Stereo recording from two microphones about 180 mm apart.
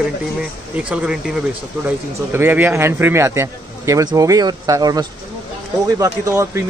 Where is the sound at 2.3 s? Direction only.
10° right (ahead or behind).